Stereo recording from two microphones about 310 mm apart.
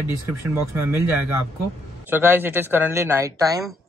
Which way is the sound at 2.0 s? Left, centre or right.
Centre.